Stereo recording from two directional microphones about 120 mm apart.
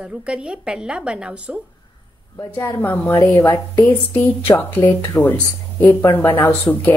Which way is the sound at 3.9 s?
15° left (ahead or behind).